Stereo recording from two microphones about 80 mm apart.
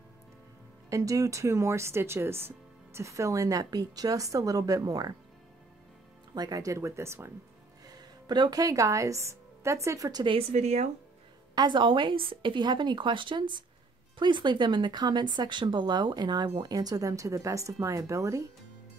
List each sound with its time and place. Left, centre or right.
0.8 s speech: right
6.3 s speech: right
7.8 s speech: right
11.5 s a woman's voice: right